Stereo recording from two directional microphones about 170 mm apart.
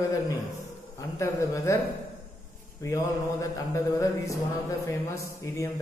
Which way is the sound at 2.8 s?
20° left (ahead or behind).